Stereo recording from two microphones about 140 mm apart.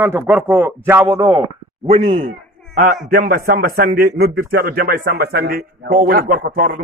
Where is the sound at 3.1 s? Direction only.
90° right.